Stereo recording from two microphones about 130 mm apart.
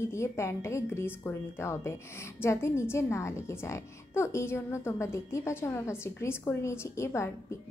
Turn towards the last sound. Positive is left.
turn(degrees=20)  # may be behind; listen again after turning